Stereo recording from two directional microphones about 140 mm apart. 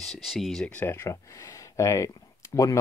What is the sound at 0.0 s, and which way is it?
Speech, centre (ahead or behind).